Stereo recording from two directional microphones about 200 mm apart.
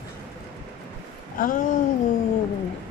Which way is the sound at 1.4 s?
40° left (ahead or behind).